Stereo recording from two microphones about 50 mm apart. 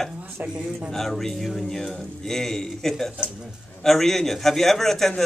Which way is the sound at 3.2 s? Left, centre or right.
Centre.